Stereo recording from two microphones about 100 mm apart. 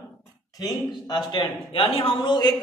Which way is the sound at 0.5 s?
45° left (ahead or behind).